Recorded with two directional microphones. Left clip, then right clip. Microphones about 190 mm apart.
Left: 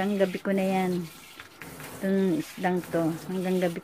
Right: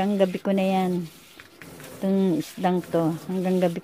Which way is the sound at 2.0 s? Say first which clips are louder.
Right 2 dB; 25° right (ahead or behind).